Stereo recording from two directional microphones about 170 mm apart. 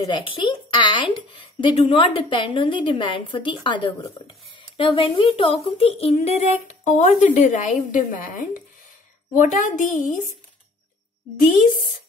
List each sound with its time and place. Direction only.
0.0 s speech: 30° left (ahead or behind); by 8.0 s 45° left (ahead or behind)
9.3 s a woman's voice: 50° left (ahead or behind)
11.3 s a woman's voice: 50° left (ahead or behind)